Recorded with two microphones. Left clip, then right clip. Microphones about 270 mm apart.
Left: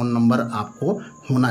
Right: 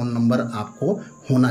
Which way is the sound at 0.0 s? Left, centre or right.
Centre.